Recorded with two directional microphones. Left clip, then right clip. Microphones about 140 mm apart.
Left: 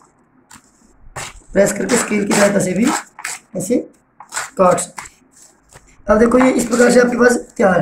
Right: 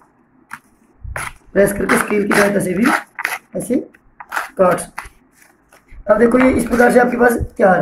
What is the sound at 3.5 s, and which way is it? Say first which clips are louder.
Speech: left 4 dB; 15° left (ahead or behind).